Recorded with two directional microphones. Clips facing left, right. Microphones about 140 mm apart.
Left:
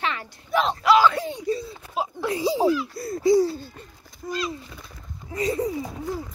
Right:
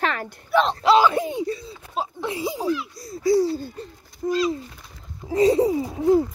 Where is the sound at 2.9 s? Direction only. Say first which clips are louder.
Left 6 dB; 60° left (ahead or behind).